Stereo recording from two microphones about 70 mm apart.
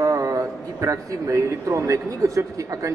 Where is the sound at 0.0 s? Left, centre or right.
Right.